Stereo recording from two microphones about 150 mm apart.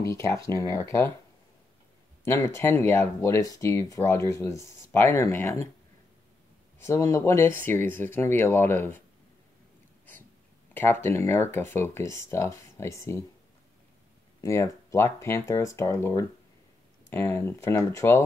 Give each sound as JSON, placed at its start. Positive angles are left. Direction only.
{"t": 0.4, "sound": "speech", "side_deg": 20}
{"t": 2.2, "sound": "speech", "side_deg": 15}
{"t": 6.8, "sound": "speech", "side_deg": 20}
{"t": 10.7, "sound": "speech", "side_deg": 15}
{"t": 14.4, "sound": "speech", "side_deg": 20}